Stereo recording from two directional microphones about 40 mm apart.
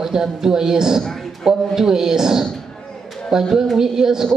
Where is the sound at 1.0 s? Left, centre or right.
Centre.